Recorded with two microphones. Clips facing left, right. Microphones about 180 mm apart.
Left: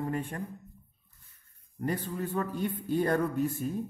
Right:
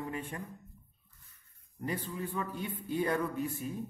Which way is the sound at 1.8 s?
45° left (ahead or behind).